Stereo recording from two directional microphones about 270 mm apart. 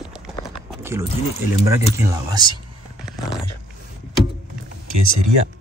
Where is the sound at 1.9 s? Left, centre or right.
Centre.